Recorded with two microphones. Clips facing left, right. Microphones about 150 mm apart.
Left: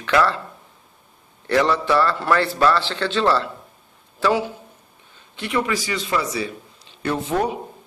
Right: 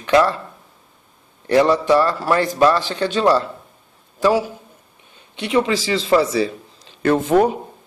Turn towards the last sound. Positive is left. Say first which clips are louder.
# right 7 dB
turn(degrees=-50)  # may be behind; listen again after turning